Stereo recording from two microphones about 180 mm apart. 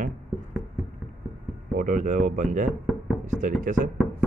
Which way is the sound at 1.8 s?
50° right (ahead or behind).